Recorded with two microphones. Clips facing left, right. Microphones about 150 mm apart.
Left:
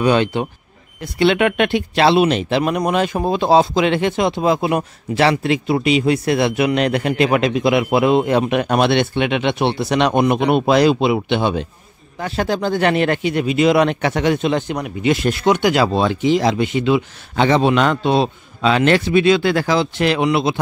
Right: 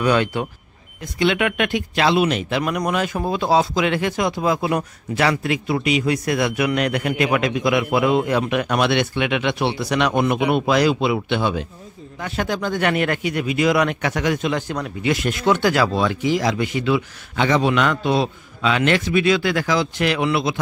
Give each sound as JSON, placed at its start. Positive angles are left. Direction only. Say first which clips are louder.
{"t": 0.0, "sound": "speech", "louder": "left 3 dB", "side_deg": 20}
{"t": 12.2, "sound": "speech", "louder": "left 4 dB", "side_deg": 35}